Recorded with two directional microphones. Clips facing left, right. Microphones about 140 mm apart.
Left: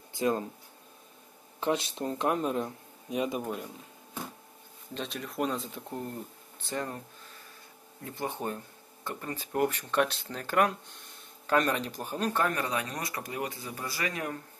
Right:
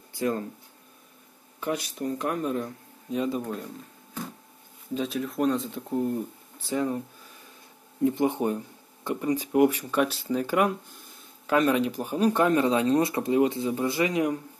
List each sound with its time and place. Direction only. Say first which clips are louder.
0.1 s a sound: right 1 dB; 20° left (ahead or behind)
1.6 s speech: even; 25° left (ahead or behind)
4.9 s speech: right 7 dB; 5° right (ahead or behind)
8.0 s speech: right 11 dB; 20° right (ahead or behind)